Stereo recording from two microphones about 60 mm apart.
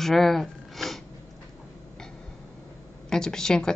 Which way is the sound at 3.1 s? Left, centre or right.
Centre.